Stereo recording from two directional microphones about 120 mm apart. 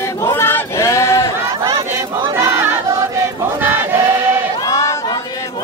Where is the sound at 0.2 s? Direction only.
20° left (ahead or behind).